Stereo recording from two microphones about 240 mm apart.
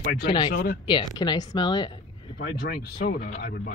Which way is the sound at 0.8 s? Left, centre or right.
Centre.